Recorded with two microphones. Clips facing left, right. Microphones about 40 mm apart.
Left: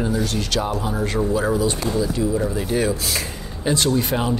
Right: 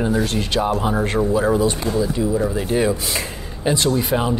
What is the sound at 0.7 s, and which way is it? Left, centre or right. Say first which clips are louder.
Speech: right 4 dB; right.